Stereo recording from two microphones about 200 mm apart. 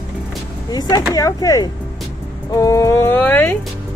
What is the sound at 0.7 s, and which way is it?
Speech, 20° left (ahead or behind).